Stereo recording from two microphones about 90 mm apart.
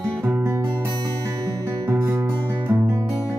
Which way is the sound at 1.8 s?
30° right (ahead or behind).